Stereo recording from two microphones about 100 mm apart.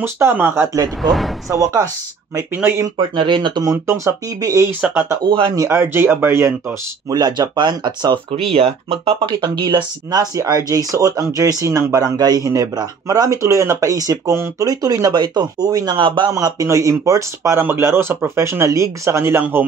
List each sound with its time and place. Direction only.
0.0 s speech: 25° right (ahead or behind)
1.0 s speech: centre (ahead or behind)
1.5 s speech: 35° right (ahead or behind)
3.0 s speech: 50° right (ahead or behind)
3.6 s speech: 25° right (ahead or behind)
4.6 s speech: 20° right (ahead or behind)
5.2 s speech: 55° right (ahead or behind)
5.6 s speech: 25° right (ahead or behind)
7.1 s speech: 45° right (ahead or behind)
8.5 s speech: 75° right (ahead or behind)
9.4 s speech: 50° right (ahead or behind)
10.3 s speech: 35° right (ahead or behind); by 16.3 s 55° right (ahead or behind)
16.3 s speech: 40° right (ahead or behind); by 19.6 s 20° right (ahead or behind)